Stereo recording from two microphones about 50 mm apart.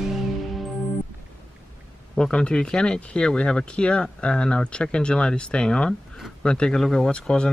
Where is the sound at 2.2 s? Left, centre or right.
Centre.